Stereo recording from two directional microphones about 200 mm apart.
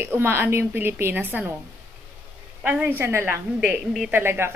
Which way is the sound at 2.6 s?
10° right (ahead or behind).